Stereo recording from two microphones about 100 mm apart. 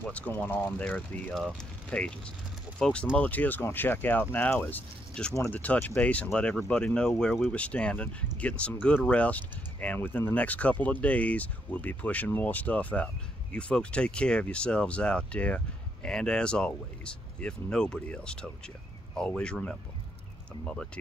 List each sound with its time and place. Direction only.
0.0 s speech: 15° left (ahead or behind)